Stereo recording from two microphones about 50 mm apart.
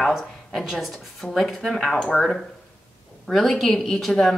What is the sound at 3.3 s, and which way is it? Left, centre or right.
A woman's voice, centre.